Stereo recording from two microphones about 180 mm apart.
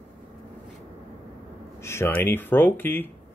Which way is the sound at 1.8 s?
15° left (ahead or behind).